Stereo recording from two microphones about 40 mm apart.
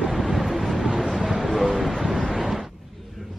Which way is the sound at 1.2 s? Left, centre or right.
Centre.